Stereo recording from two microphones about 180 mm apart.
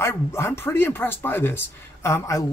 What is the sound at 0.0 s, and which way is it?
Speech, 15° left (ahead or behind).